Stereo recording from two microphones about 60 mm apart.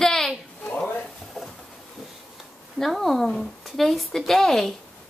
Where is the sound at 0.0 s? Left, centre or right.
Centre.